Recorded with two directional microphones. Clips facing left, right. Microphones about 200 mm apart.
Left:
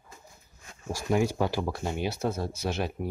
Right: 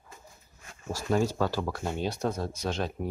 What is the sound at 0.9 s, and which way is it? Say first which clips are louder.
Speech: left 1 dB; 10° left (ahead or behind).